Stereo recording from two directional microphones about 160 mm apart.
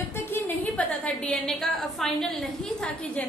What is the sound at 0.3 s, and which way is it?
A woman's voice, 5° left (ahead or behind).